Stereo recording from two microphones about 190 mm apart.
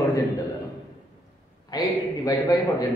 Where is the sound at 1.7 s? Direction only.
20° left (ahead or behind).